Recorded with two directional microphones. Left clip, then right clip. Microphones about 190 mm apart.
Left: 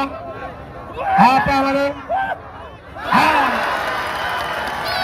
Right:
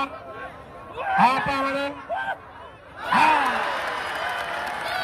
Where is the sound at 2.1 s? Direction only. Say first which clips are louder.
Left 7 dB; 10° right (ahead or behind).